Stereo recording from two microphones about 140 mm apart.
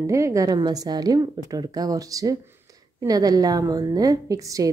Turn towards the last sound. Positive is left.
turn(degrees=-25)  # may be behind; listen again after turning